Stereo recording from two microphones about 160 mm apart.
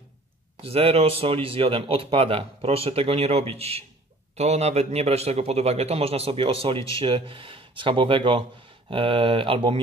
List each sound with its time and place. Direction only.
0.6 s a man's voice: 40° right (ahead or behind)